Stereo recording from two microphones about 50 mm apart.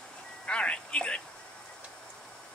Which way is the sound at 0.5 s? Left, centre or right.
Left.